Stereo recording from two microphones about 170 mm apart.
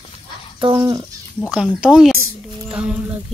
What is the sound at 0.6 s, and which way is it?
Child singing, 25° right (ahead or behind).